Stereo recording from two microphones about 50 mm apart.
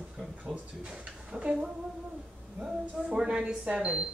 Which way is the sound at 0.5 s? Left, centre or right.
Centre.